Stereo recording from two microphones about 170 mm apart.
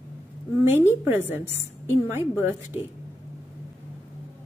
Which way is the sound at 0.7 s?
15° right (ahead or behind).